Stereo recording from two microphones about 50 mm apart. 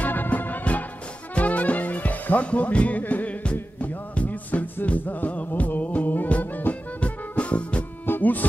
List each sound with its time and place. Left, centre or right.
0.0 s music: left
8.1 s music: left